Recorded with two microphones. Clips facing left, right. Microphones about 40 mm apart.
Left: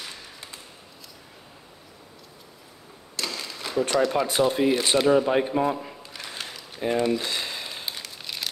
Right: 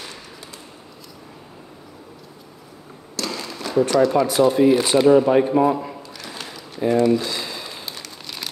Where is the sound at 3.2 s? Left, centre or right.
Centre.